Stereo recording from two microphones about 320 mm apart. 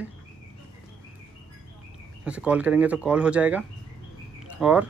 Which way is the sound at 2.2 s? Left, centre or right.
Centre.